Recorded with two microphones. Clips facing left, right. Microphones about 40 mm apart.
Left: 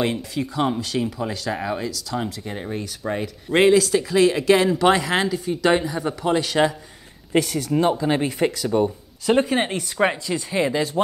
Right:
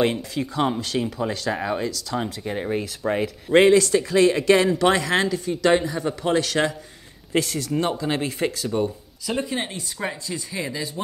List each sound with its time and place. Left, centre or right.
0.0 s speech: centre
7.3 s speech: left
7.7 s speech: centre
9.2 s speech: left
10.5 s speech: left